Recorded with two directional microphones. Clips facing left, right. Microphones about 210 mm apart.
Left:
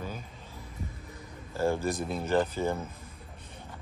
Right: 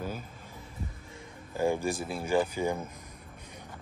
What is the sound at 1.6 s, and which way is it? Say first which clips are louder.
Speech: even; 15° right (ahead or behind).